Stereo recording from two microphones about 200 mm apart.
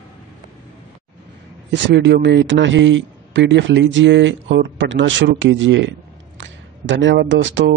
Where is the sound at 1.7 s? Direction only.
60° right (ahead or behind).